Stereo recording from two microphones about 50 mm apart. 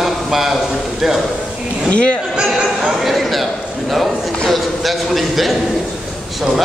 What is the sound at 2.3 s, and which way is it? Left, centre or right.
Speech, centre.